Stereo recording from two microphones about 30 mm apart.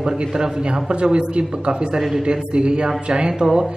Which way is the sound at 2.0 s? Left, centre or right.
Centre.